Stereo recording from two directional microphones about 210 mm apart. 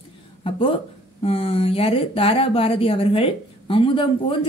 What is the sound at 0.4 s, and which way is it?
Speech, 25° left (ahead or behind).